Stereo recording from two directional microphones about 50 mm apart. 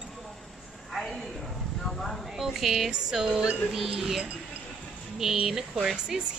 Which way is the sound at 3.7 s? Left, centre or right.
Centre.